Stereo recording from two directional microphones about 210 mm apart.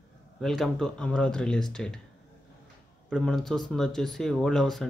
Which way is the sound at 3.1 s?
Centre (ahead or behind).